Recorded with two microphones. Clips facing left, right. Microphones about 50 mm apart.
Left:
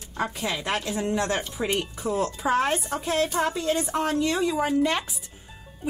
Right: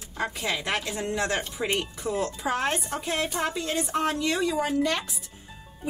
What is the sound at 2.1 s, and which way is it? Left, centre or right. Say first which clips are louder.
Speech: left 2 dB; right.